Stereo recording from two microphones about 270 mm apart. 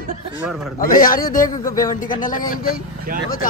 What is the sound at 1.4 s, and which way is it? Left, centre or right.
Speech, centre.